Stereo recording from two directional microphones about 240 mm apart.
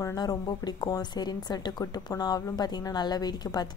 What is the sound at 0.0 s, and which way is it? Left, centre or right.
A woman's voice, centre.